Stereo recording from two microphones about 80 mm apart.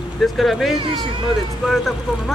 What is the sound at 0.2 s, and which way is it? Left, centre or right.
Speech, centre.